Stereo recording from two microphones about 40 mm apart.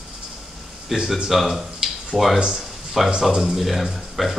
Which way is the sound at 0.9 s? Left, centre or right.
Centre.